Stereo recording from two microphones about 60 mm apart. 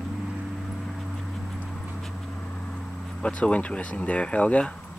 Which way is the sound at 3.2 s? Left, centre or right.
Centre.